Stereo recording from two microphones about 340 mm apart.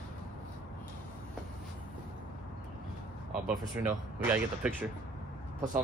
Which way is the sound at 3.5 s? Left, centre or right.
Centre.